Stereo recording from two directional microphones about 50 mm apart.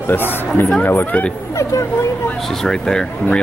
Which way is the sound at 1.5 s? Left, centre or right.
Left.